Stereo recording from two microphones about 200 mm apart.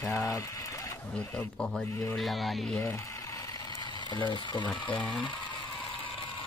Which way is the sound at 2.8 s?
15° left (ahead or behind).